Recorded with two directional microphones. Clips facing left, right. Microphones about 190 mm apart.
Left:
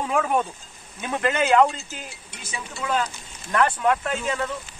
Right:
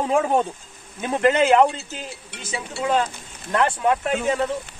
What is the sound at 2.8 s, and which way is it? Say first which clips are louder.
Speech: right 4 dB; 25° right (ahead or behind).